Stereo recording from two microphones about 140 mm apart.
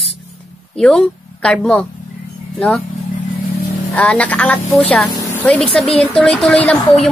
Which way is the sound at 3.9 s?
10° left (ahead or behind).